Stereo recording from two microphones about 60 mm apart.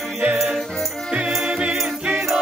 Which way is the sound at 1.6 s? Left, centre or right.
Centre.